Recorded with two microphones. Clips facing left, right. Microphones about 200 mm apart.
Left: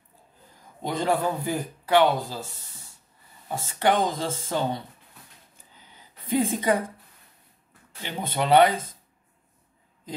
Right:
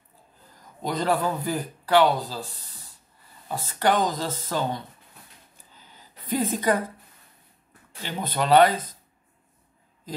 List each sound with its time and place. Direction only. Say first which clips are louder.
1.0 s speech: even; 20° left (ahead or behind)
5.8 s a sound: right 1 dB; 20° left (ahead or behind)
8.0 s speech: even; 20° left (ahead or behind)